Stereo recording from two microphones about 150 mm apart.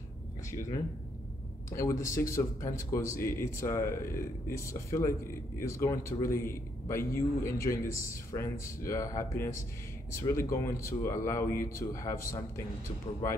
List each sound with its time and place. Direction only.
0.5 s a man's voice: 20° left (ahead or behind)